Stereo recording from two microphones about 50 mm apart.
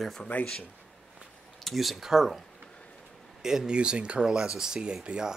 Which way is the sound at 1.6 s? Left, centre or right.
Centre.